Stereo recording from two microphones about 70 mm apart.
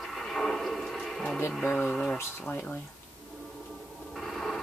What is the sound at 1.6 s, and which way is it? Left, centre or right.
Speech, centre.